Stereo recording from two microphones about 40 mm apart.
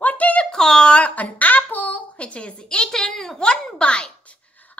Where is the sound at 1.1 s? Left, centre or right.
Left.